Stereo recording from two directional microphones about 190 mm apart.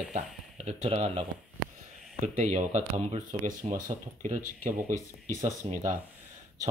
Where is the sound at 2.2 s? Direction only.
40° right (ahead or behind).